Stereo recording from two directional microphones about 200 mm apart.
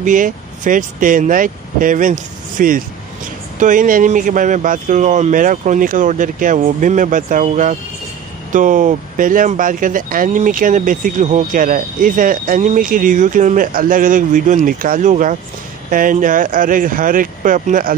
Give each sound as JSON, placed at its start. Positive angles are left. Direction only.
{"t": 0.0, "sound": "speech", "side_deg": -40}